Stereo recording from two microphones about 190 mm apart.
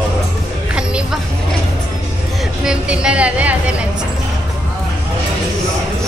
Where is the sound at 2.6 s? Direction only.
5° right (ahead or behind).